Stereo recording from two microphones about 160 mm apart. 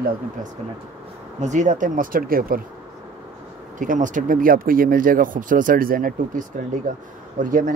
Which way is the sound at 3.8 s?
55° right (ahead or behind).